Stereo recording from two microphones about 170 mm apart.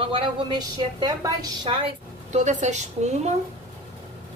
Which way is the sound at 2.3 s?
45° right (ahead or behind).